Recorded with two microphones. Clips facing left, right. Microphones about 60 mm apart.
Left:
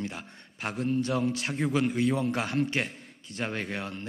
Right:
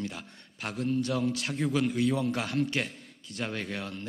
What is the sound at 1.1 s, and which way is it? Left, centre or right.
A man's voice, left.